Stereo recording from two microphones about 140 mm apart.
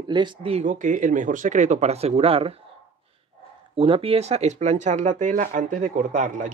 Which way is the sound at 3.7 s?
40° right (ahead or behind).